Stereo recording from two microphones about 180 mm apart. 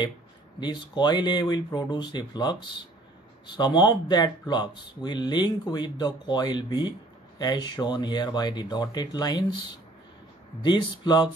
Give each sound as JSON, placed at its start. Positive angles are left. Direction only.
{"t": 0.6, "sound": "speech", "side_deg": 25}
{"t": 10.6, "sound": "speech", "side_deg": 25}